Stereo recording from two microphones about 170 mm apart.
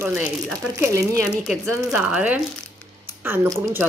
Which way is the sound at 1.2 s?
5° left (ahead or behind).